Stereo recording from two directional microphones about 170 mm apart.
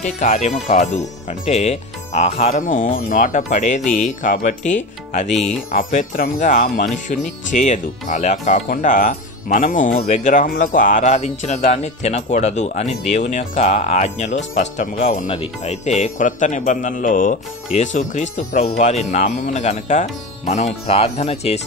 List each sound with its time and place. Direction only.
0.0 s speech: 45° left (ahead or behind)